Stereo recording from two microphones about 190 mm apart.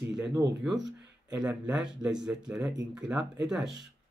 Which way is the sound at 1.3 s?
5° right (ahead or behind).